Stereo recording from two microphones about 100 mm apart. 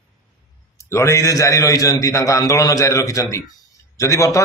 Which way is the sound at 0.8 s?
30° left (ahead or behind).